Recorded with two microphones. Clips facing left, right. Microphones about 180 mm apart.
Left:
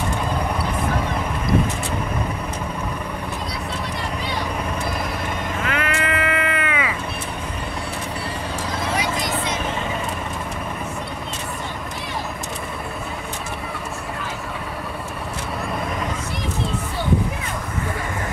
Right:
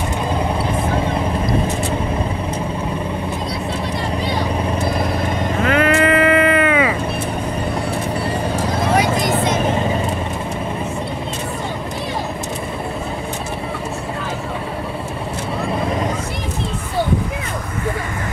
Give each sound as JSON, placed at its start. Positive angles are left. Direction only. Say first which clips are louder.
{"t": 5.6, "sound": "vehicle", "louder": "right 10 dB", "side_deg": -35}
{"t": 8.9, "sound": "vehicle", "louder": "right 8 dB", "side_deg": -50}